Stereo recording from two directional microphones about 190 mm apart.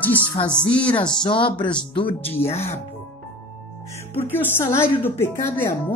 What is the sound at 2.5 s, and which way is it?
Speech, 35° left (ahead or behind).